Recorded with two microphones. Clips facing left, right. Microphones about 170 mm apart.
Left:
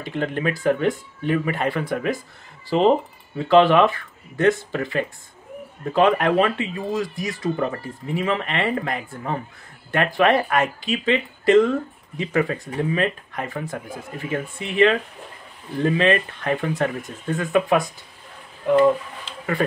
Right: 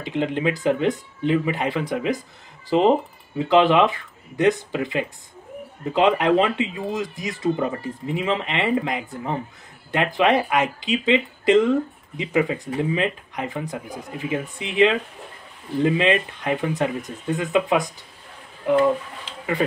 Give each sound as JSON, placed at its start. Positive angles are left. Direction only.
{"t": 0.0, "sound": "speech", "side_deg": -20}